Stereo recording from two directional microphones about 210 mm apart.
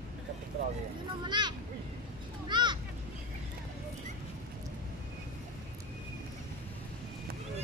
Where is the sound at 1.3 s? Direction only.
20° right (ahead or behind).